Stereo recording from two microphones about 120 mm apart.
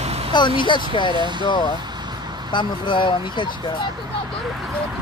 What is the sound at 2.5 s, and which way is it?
Speech, 40° left (ahead or behind).